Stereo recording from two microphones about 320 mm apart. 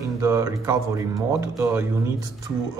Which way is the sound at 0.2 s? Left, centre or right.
Centre.